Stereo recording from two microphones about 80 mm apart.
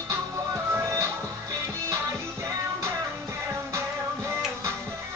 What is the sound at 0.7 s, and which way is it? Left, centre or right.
Music, right.